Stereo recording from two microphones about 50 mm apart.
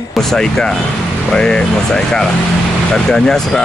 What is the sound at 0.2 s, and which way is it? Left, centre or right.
Speech, centre.